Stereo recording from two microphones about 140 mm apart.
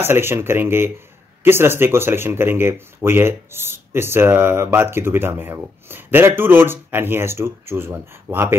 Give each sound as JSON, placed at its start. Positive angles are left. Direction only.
{"t": 0.0, "sound": "speech", "side_deg": -15}